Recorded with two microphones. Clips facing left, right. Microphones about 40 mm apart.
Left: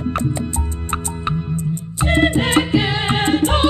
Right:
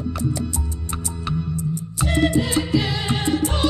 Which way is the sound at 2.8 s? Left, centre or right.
Left.